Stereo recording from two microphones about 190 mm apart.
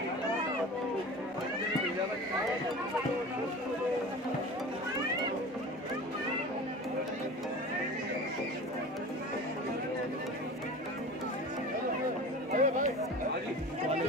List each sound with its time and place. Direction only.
12.5 s music: 45° right (ahead or behind)